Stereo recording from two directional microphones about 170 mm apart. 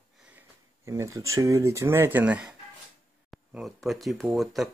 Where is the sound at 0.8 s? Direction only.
20° right (ahead or behind).